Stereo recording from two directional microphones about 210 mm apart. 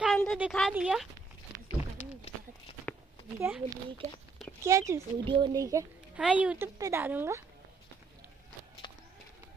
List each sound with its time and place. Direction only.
0.0 s speech: centre (ahead or behind)
3.3 s a child's voice: 10° right (ahead or behind)
4.0 s speech: 30° right (ahead or behind)
4.6 s a child's voice: 15° right (ahead or behind)